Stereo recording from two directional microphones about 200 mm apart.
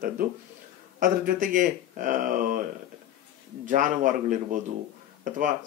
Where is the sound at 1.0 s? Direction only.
45° right (ahead or behind).